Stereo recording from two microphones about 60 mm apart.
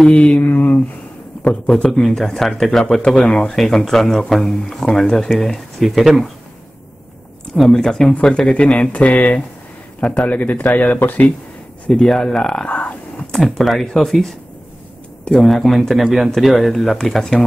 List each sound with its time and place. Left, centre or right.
0.0 s speech: left
1.7 s a man's voice: centre
7.5 s a man's voice: centre; by 11.2 s left
11.9 s a man's voice: centre
12.6 s speech: left
13.3 s speech: centre
15.4 s speech: centre